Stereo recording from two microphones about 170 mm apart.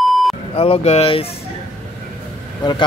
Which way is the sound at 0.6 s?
35° left (ahead or behind).